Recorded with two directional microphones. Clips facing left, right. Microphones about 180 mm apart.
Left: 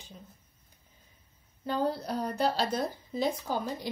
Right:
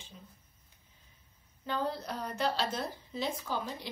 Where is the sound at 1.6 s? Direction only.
35° left (ahead or behind).